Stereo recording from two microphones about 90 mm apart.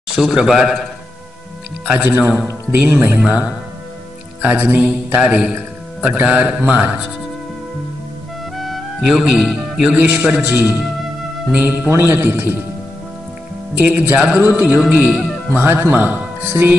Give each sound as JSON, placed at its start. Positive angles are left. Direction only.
{"t": 0.1, "sound": "a man's voice", "side_deg": -5}
{"t": 1.9, "sound": "a man's voice", "side_deg": -15}
{"t": 8.5, "sound": "a man's voice", "side_deg": 0}
{"t": 13.7, "sound": "a man's voice", "side_deg": -20}
{"t": 15.5, "sound": "speech", "side_deg": -25}